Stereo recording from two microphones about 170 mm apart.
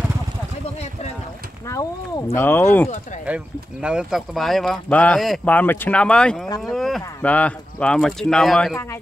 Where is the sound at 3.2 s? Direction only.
5° right (ahead or behind).